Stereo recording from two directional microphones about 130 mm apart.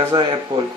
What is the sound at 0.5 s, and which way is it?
Speech, 40° right (ahead or behind).